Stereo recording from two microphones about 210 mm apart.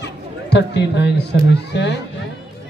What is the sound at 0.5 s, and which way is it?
A man's voice, 55° left (ahead or behind).